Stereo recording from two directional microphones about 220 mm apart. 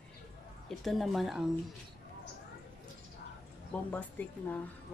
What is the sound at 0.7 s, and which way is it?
Speech, centre (ahead or behind).